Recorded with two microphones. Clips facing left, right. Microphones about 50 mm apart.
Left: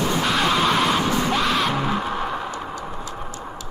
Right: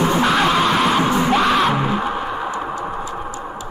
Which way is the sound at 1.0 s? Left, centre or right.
Right.